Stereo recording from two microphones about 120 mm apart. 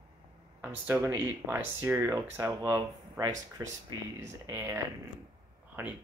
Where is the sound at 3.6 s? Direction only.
30° right (ahead or behind).